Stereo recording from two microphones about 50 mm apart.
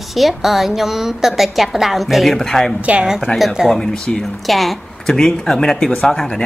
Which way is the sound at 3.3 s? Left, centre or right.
Left.